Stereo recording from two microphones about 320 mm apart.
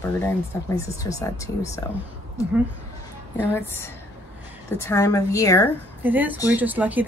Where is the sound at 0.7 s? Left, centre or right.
Centre.